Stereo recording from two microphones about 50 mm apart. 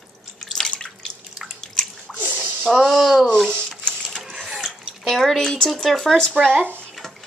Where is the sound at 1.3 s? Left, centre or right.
Centre.